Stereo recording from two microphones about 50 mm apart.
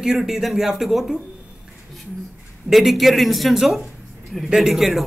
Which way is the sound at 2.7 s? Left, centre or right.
Centre.